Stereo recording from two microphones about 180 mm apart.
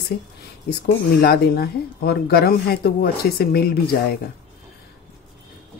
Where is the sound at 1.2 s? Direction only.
60° left (ahead or behind).